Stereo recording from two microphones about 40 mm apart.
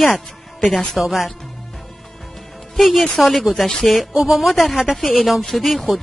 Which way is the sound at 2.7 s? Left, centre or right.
Centre.